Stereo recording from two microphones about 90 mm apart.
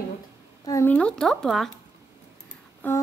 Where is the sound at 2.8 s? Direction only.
20° left (ahead or behind).